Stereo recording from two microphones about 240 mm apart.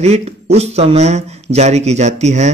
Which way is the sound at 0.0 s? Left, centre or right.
Right.